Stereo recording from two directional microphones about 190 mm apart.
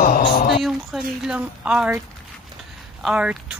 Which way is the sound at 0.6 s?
Centre (ahead or behind).